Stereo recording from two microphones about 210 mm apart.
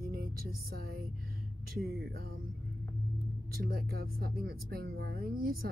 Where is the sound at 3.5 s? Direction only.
45° right (ahead or behind).